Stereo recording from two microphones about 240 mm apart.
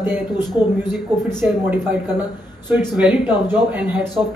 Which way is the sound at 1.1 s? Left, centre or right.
Centre.